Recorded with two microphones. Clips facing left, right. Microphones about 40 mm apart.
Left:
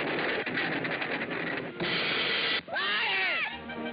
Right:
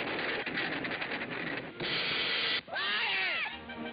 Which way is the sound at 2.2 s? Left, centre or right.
Centre.